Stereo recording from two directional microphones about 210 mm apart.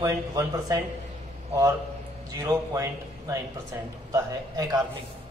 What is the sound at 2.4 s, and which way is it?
A man's voice, 15° right (ahead or behind).